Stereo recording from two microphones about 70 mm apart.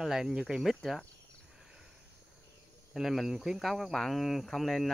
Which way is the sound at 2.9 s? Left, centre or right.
Centre.